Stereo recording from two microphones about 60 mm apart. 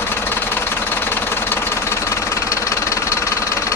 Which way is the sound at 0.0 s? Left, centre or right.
Left.